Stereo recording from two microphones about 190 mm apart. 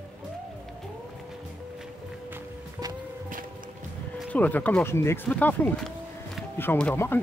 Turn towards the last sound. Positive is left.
turn(degrees=10)  # may be behind; listen again after turning